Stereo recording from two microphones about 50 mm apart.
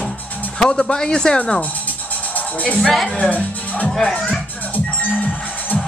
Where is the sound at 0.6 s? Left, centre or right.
Centre.